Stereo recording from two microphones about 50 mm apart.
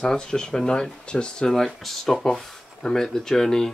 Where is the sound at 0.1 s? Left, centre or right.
Centre.